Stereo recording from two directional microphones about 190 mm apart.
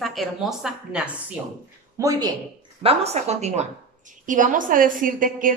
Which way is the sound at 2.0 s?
20° right (ahead or behind).